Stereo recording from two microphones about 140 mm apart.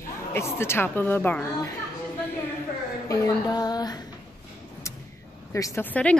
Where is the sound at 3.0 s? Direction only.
25° left (ahead or behind).